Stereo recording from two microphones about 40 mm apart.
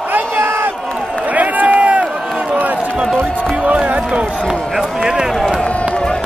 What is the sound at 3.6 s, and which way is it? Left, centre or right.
Music, right.